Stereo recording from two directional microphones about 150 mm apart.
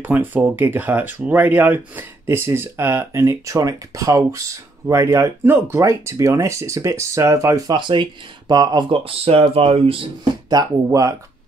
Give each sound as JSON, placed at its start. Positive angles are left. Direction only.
{"t": 0.0, "sound": "speech", "side_deg": -10}
{"t": 10.5, "sound": "speech", "side_deg": -25}